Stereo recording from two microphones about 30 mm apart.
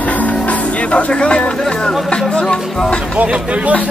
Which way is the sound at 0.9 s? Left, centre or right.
Left.